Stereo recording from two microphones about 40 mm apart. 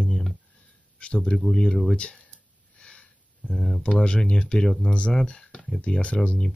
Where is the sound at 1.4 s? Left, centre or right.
Centre.